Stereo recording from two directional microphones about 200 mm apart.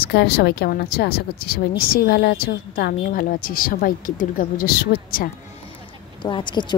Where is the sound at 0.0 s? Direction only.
55° left (ahead or behind).